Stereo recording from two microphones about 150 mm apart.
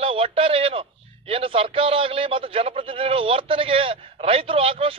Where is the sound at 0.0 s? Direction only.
40° right (ahead or behind).